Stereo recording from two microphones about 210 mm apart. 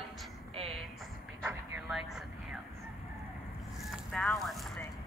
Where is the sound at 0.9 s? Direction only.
Centre (ahead or behind).